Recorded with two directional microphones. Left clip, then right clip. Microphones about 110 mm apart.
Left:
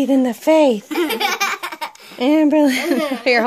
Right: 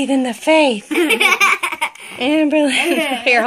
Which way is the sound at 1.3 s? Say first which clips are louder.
Right 7 dB; 45° left (ahead or behind).